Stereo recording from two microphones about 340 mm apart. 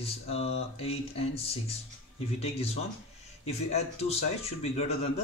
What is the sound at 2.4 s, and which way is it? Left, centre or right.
A man's voice, centre.